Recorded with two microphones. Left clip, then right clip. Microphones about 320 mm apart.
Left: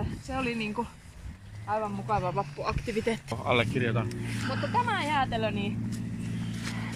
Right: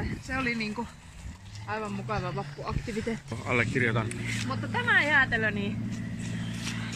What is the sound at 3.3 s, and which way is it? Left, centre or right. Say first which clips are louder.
Speech: even; centre.